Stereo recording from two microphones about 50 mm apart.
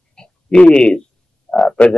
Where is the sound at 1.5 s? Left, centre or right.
Centre.